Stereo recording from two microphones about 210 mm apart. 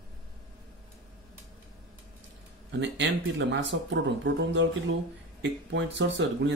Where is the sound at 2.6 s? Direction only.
60° right (ahead or behind).